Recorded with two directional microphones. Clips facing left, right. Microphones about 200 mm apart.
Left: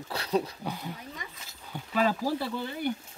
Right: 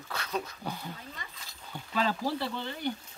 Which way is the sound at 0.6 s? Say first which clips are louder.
Left 2 dB; 10° left (ahead or behind).